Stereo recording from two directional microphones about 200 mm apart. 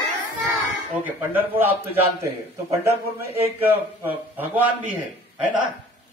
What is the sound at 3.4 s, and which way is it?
A man's voice, 10° right (ahead or behind).